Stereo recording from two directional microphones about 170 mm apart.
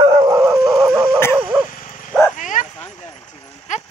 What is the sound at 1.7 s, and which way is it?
Bow-wow, 45° left (ahead or behind).